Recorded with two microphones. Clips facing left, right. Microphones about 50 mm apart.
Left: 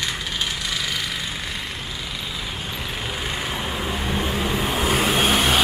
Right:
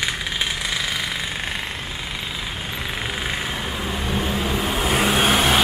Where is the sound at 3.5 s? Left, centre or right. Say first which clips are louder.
Even; centre.